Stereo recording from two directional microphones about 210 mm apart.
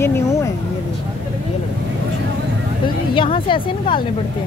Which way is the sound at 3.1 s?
25° left (ahead or behind).